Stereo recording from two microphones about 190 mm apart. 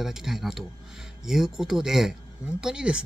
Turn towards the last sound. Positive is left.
turn(degrees=-5)  # may be behind; listen again after turning